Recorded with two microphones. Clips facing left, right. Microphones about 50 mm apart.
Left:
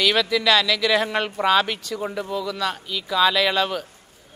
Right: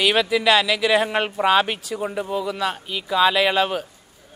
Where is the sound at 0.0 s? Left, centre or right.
Centre.